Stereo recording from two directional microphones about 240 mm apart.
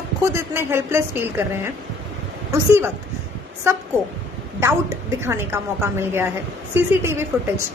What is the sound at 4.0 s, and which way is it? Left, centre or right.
A woman's voice, centre.